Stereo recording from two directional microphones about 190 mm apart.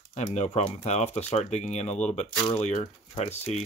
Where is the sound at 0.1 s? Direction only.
35° left (ahead or behind).